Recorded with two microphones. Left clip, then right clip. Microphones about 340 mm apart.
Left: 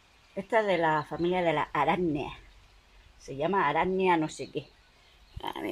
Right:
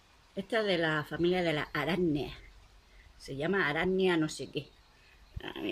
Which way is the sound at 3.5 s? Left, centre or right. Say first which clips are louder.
Left 4 dB; centre.